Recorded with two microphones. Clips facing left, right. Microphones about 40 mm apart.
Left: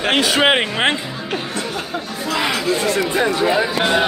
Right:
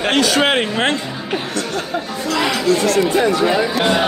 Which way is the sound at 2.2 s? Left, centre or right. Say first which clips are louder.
Right 2 dB; centre.